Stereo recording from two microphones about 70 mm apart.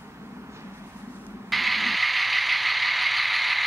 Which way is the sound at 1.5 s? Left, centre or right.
Centre.